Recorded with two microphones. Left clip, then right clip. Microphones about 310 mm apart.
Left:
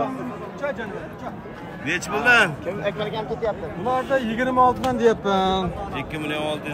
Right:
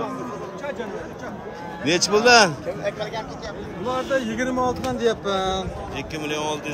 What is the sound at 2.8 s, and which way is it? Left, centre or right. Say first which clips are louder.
Speech: left 3 dB; centre.